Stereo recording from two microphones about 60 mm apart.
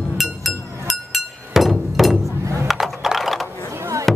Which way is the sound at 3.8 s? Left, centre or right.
Right.